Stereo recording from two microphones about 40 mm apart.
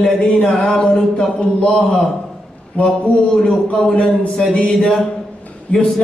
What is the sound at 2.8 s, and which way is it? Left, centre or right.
Speech, left.